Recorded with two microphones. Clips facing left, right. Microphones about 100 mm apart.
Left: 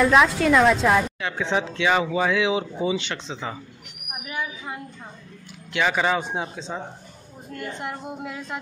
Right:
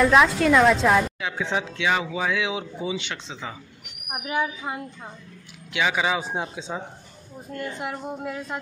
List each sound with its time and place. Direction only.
0.0 s a woman's voice: centre (ahead or behind)
4.1 s speech: 55° right (ahead or behind)
5.7 s a woman's voice: 5° right (ahead or behind)